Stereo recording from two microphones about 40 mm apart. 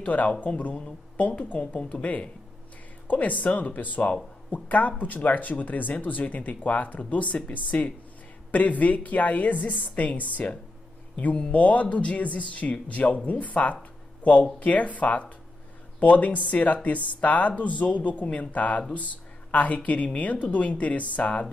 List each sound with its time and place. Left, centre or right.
0.0 s speech: left